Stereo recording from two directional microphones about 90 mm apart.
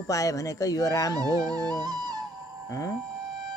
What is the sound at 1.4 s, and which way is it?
Music, 45° right (ahead or behind).